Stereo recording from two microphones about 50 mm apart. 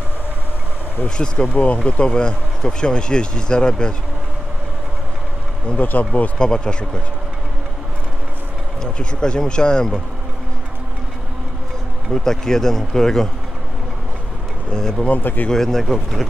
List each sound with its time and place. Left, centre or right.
1.0 s speech: centre
5.8 s speech: left
6.3 s speech: centre
8.8 s speech: centre
12.1 s speech: centre
14.7 s speech: centre
15.0 s speech: left
15.5 s speech: centre